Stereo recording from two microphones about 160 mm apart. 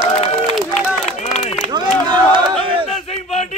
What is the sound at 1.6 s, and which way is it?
Speech, 30° right (ahead or behind).